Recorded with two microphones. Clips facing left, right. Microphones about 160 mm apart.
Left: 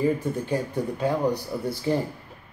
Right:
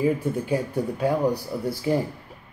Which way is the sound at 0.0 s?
10° right (ahead or behind).